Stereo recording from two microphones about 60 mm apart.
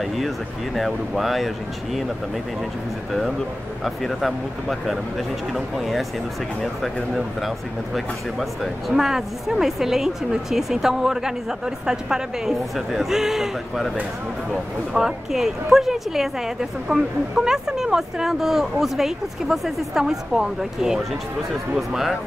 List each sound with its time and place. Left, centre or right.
0.0 s speech: centre
3.1 s speech: centre
15.0 s speech: centre
16.9 s speech: right
17.5 s speech: centre